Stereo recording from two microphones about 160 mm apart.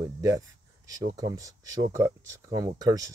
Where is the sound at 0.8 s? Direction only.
20° right (ahead or behind).